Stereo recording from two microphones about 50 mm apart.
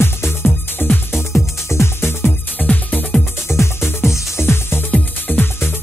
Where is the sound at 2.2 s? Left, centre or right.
Left.